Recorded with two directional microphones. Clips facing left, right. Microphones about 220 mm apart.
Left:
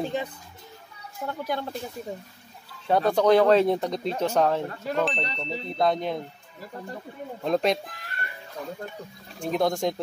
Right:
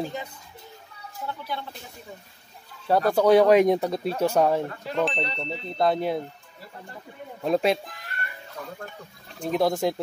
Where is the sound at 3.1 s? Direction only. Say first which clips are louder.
Right 2 dB; 10° right (ahead or behind).